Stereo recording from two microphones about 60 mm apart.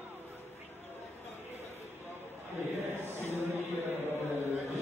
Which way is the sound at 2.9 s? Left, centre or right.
Right.